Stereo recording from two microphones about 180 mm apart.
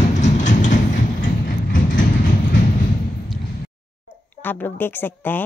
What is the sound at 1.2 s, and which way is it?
Vehicle, 50° left (ahead or behind).